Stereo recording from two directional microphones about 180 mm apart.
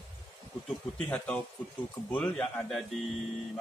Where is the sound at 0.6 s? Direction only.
5° left (ahead or behind).